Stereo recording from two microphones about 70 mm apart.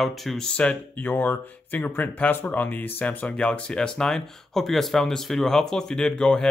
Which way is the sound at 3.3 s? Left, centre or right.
Centre.